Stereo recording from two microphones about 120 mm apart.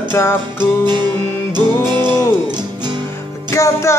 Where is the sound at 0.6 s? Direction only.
40° right (ahead or behind).